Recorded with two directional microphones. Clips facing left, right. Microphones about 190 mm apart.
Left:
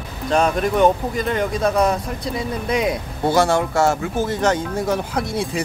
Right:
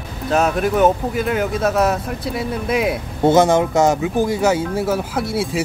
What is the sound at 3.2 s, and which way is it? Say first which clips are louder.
Speech: right 4 dB; 20° right (ahead or behind).